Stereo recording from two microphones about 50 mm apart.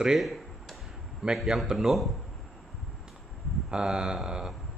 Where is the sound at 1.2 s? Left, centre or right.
Centre.